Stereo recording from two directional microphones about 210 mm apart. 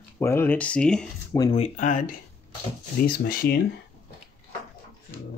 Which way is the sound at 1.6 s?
35° left (ahead or behind).